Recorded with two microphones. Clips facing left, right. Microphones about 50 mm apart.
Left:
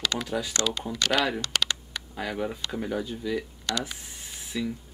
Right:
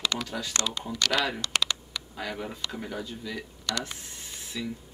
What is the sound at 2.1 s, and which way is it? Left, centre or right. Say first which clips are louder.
Speech: left 5 dB; centre.